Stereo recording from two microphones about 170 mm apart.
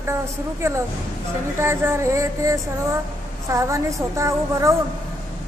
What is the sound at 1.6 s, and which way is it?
A woman's voice, 15° right (ahead or behind).